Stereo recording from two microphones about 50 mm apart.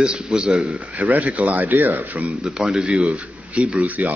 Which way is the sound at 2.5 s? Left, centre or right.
Centre.